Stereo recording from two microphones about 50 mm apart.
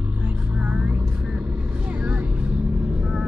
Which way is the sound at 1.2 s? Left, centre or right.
Centre.